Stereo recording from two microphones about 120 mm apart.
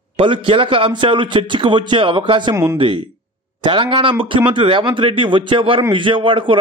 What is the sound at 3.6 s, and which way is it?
A man's voice, 45° right (ahead or behind).